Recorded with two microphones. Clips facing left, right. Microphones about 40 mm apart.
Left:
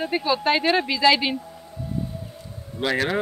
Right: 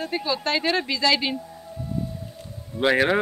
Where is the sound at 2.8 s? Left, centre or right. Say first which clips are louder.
Right 4 dB; centre.